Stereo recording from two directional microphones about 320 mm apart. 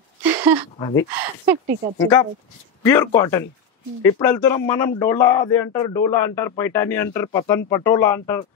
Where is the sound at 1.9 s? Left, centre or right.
Centre.